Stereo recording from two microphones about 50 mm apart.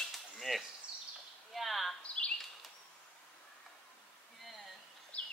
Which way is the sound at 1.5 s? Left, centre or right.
Centre.